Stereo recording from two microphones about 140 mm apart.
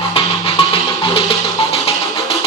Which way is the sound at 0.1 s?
40° left (ahead or behind).